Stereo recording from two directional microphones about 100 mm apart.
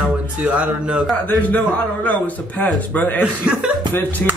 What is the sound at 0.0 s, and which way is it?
Speech, 15° right (ahead or behind).